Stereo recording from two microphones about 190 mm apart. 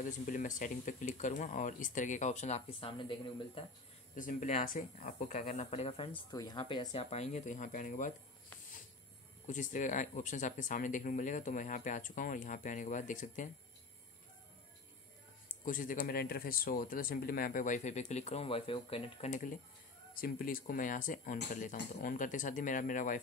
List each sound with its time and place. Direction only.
0.0 s speech: 40° left (ahead or behind)
4.1 s speech: 45° left (ahead or behind)
6.3 s speech: 20° left (ahead or behind); by 8.1 s 40° left (ahead or behind)
9.5 s speech: 40° left (ahead or behind)
15.4 s speech: 45° left (ahead or behind)